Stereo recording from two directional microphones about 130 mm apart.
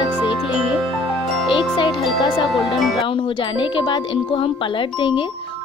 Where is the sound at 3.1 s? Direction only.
40° left (ahead or behind).